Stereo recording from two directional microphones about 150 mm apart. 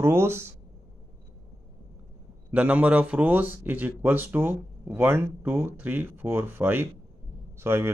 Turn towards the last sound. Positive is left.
turn(degrees=-15)  # may be behind; listen again after turning